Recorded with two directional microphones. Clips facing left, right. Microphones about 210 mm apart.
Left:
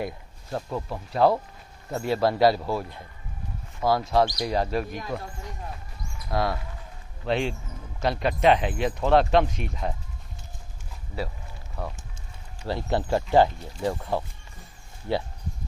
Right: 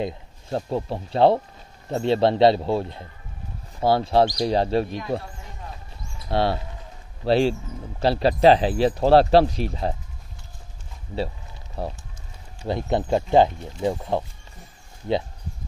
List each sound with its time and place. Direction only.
0.0 s speech: 30° right (ahead or behind)
6.2 s speech: 30° right (ahead or behind)
11.8 s speech: 30° right (ahead or behind)
12.6 s speech: 20° right (ahead or behind)